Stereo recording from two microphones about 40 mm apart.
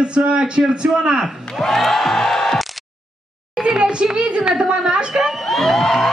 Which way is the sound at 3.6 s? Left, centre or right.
Right.